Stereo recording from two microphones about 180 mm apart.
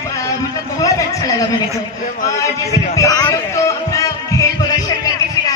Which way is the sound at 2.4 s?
15° left (ahead or behind).